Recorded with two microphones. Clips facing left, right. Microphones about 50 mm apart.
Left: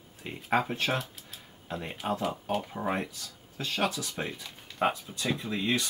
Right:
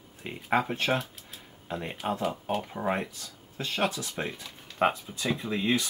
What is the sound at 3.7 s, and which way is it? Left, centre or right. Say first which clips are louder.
Speech: right 1 dB; right.